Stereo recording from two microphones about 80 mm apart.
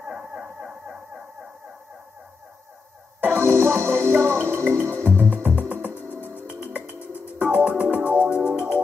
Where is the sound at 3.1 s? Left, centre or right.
Right.